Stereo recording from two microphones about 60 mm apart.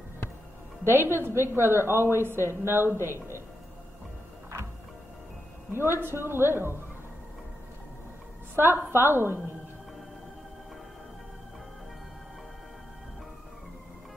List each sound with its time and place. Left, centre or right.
0.8 s a woman's voice: right
5.7 s a woman's voice: right
8.5 s a woman's voice: right